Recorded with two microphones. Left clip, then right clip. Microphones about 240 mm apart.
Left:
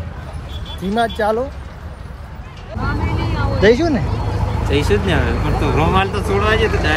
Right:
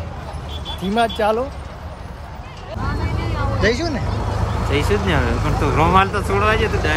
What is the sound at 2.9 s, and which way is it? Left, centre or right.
Vehicle, left.